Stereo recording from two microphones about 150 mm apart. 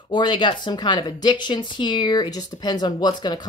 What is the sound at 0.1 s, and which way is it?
Speech, 30° left (ahead or behind).